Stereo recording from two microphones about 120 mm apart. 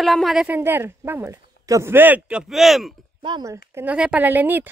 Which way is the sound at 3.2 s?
40° right (ahead or behind).